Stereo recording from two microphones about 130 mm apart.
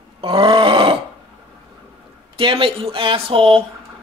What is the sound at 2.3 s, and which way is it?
Speech, 40° right (ahead or behind).